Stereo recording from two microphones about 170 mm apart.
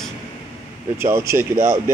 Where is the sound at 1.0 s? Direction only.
15° right (ahead or behind).